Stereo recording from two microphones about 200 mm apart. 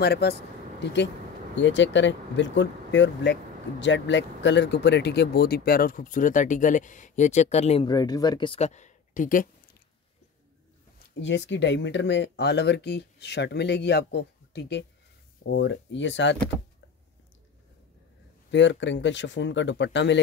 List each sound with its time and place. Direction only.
0.0 s speech: 55° left (ahead or behind)
1.6 s speech: 65° left (ahead or behind); by 7.8 s 35° left (ahead or behind)
7.8 s speech: 20° left (ahead or behind); by 9.5 s 40° left (ahead or behind)
11.1 s speech: 60° left (ahead or behind)
18.5 s speech: 65° left (ahead or behind)